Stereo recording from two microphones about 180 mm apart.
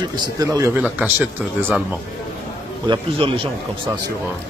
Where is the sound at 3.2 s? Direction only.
30° right (ahead or behind).